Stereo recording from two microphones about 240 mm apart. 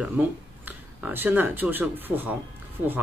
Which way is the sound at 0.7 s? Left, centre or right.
Centre.